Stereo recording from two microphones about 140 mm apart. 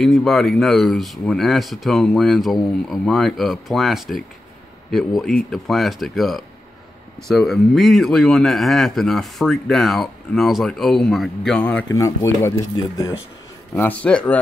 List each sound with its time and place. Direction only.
0.0 s speech: centre (ahead or behind)
11.9 s speech: 20° left (ahead or behind)
12.7 s speech: 30° left (ahead or behind)
13.7 s speech: 10° left (ahead or behind)